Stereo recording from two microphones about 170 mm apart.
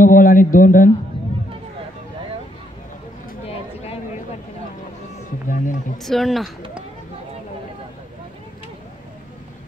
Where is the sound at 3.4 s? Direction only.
35° left (ahead or behind).